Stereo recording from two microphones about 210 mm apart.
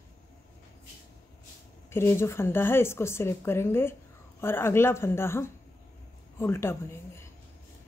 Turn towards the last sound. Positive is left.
turn(degrees=10)  # may be behind; listen again after turning